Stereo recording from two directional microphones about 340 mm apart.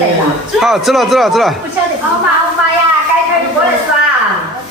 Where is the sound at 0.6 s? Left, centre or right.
Centre.